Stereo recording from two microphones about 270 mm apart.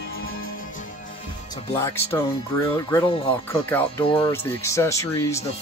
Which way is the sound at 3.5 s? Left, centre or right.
Centre.